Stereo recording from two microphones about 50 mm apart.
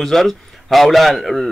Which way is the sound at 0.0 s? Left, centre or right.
Centre.